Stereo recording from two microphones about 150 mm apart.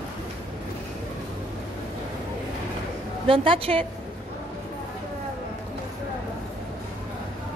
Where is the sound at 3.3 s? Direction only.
40° right (ahead or behind).